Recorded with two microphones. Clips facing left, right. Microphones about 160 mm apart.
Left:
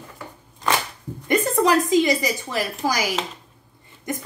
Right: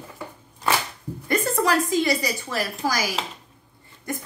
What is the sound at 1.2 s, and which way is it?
A woman's voice, 20° left (ahead or behind).